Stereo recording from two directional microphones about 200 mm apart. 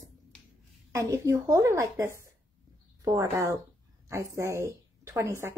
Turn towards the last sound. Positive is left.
turn(degrees=-15)  # may be behind; listen again after turning